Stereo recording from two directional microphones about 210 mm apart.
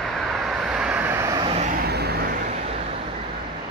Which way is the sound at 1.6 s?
45° right (ahead or behind).